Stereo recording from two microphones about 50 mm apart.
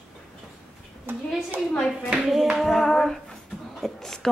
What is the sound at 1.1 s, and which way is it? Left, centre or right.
Speech, right.